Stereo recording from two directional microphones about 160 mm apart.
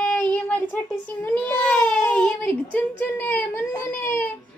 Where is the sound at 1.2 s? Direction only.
10° left (ahead or behind).